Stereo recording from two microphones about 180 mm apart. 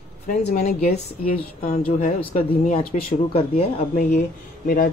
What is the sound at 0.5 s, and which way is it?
Speech, 35° left (ahead or behind).